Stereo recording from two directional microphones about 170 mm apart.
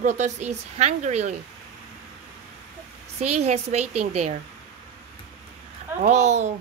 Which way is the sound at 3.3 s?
40° right (ahead or behind).